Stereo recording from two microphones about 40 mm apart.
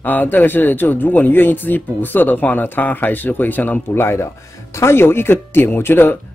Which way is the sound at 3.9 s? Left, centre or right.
Left.